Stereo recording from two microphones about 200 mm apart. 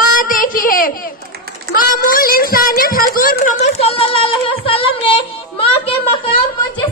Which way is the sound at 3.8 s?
30° left (ahead or behind).